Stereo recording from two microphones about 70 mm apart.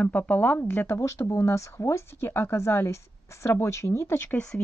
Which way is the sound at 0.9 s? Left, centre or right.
Left.